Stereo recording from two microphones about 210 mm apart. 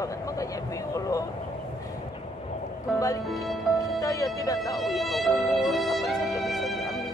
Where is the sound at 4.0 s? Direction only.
15° left (ahead or behind).